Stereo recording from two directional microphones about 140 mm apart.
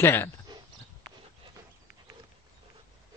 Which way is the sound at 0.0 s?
15° left (ahead or behind).